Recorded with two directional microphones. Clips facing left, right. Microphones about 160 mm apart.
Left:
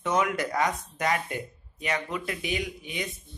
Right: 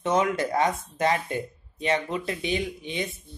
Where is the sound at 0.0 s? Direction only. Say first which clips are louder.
Right 3 dB; 25° right (ahead or behind).